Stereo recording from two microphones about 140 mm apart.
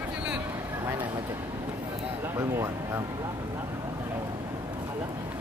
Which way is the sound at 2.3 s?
20° right (ahead or behind).